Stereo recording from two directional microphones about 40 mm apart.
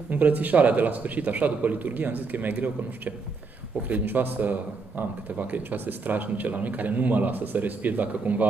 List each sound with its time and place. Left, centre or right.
0.1 s a man's voice: right
4.0 s a man's voice: right